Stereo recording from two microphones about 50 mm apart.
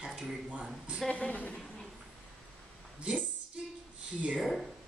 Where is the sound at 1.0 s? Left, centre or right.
Left.